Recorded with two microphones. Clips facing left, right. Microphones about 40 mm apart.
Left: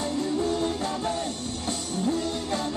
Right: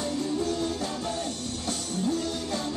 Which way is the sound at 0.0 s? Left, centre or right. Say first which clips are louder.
Left 2 dB; left.